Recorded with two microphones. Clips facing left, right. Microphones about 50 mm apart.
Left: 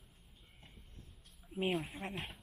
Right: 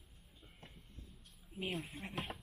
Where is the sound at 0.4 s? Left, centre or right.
Centre.